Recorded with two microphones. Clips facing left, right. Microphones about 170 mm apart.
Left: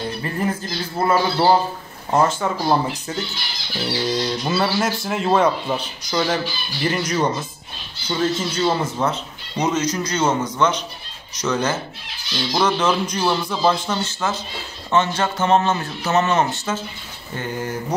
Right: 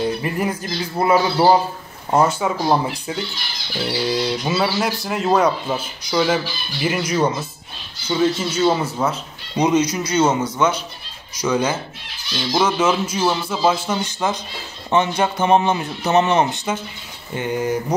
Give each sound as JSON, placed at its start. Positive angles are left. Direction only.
{"t": 0.2, "sound": "speech", "side_deg": -15}